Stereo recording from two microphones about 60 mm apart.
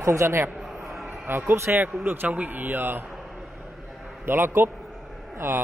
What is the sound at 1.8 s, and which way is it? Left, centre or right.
Speech, right.